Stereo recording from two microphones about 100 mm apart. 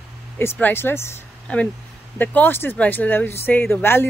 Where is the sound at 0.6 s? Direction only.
25° left (ahead or behind).